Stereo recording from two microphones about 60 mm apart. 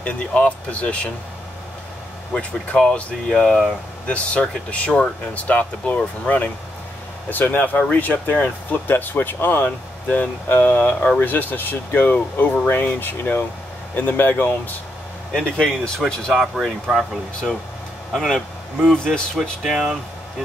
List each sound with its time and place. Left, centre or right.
0.0 s speech: left
2.3 s speech: centre
4.1 s speech: left
15.3 s speech: centre
16.1 s speech: centre
18.1 s speech: centre
19.6 s speech: centre